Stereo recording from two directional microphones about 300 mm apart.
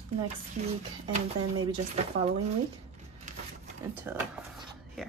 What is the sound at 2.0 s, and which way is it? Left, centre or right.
Speech, right.